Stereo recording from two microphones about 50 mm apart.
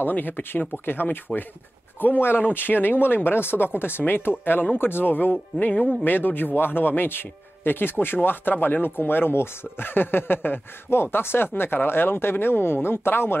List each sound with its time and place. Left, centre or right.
0.0 s speech: left